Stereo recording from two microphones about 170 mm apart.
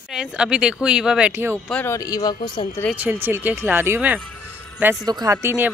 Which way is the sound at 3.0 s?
10° right (ahead or behind).